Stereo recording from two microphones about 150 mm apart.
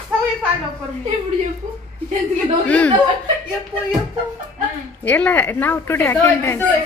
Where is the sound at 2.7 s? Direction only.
10° left (ahead or behind).